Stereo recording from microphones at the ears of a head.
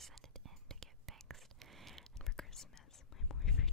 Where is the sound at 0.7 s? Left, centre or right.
Right.